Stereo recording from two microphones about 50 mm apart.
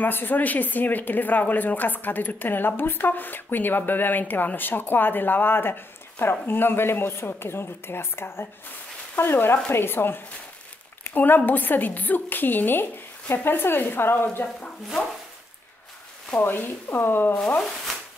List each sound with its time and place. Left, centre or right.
0.0 s a woman's voice: left
16.3 s a woman's voice: left
17.6 s speech: centre